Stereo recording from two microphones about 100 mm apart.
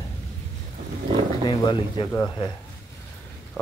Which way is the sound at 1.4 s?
50° left (ahead or behind).